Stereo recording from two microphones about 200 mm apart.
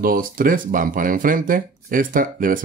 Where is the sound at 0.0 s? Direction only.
45° right (ahead or behind).